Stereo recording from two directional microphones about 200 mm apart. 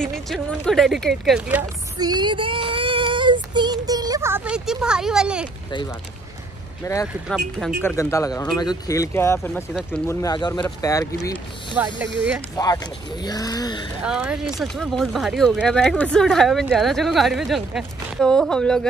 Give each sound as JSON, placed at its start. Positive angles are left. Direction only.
{"t": 0.0, "sound": "speech", "side_deg": 5}
{"t": 2.0, "sound": "child singing", "side_deg": -20}
{"t": 6.8, "sound": "speech", "side_deg": 15}
{"t": 7.2, "sound": "speech", "side_deg": 0}
{"t": 7.9, "sound": "speech", "side_deg": 15}
{"t": 11.8, "sound": "speech", "side_deg": -10}
{"t": 12.5, "sound": "speech", "side_deg": 20}
{"t": 14.0, "sound": "speech", "side_deg": -5}